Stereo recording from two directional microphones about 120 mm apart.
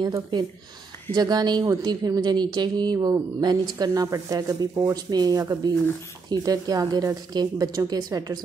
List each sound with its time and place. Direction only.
0.0 s a woman's voice: 35° right (ahead or behind)